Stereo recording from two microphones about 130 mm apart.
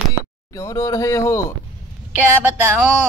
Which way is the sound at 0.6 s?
25° left (ahead or behind).